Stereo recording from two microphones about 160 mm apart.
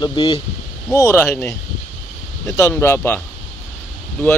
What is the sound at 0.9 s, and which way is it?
A man's voice, 20° left (ahead or behind).